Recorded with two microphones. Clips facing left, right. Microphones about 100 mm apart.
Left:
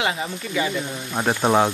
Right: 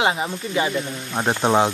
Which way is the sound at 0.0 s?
30° right (ahead or behind).